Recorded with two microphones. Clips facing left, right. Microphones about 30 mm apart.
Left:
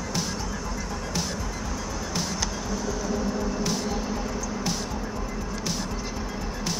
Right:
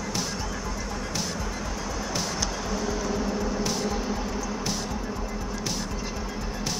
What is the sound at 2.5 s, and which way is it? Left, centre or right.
Music, centre.